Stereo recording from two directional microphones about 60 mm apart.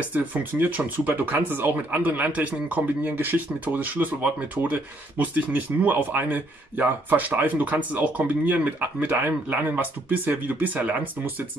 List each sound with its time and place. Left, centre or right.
0.1 s speech: right